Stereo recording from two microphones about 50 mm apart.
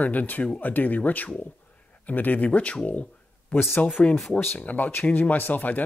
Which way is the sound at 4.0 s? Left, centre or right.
Left.